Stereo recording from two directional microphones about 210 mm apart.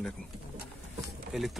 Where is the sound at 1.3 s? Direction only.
Centre (ahead or behind).